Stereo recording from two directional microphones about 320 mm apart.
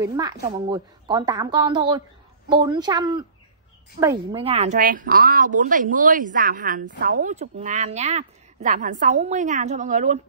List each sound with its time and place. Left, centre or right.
0.0 s a woman's voice: centre
4.3 s speech: centre